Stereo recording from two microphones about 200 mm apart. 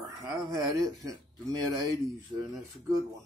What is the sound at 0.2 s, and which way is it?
Speech, 20° right (ahead or behind).